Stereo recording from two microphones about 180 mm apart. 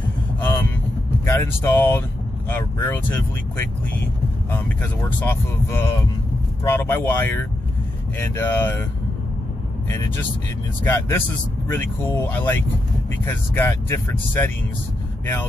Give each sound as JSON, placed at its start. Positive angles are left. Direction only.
{"t": 0.4, "sound": "vehicle", "side_deg": 15}
{"t": 1.2, "sound": "speech", "side_deg": 15}
{"t": 5.2, "sound": "speech", "side_deg": 10}
{"t": 9.8, "sound": "speech", "side_deg": 15}